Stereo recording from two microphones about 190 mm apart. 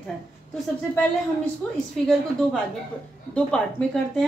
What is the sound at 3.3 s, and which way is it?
Speech, 5° left (ahead or behind).